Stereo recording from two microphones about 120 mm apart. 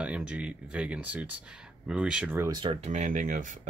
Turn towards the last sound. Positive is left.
turn(degrees=-90)